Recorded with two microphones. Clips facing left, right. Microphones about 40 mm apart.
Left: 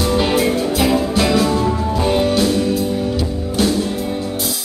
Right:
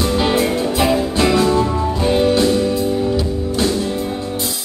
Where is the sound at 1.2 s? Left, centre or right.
Centre.